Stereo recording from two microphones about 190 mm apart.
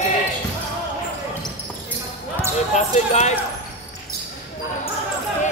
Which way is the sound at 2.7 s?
35° left (ahead or behind).